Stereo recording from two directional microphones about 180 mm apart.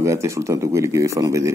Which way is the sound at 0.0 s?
15° right (ahead or behind).